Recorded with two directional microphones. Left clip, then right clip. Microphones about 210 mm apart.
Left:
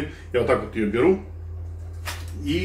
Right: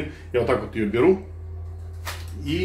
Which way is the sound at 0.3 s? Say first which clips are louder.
Left 1 dB; 20° right (ahead or behind).